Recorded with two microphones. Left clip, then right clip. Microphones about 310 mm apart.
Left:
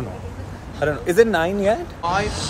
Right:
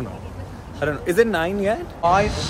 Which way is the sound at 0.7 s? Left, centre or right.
Centre.